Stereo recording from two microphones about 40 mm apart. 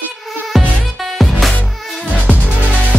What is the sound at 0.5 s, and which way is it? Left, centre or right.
Music, centre.